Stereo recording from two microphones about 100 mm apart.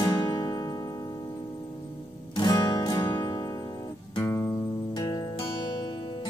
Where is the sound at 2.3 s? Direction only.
45° left (ahead or behind).